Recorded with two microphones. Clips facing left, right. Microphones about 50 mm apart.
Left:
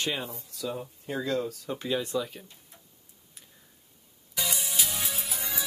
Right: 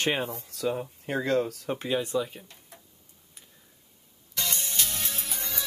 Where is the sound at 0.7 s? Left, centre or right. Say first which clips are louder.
Right 5 dB; right.